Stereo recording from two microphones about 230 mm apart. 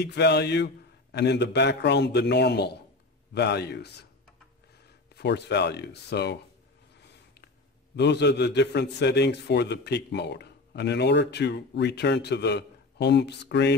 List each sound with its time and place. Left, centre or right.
0.0 s a man's voice: left
5.1 s a man's voice: left